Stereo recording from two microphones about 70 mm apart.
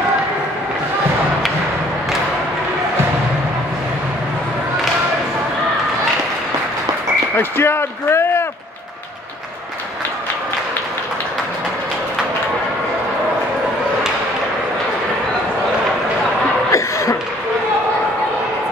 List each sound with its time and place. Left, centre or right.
7.3 s speech: left
16.7 s chuckle: left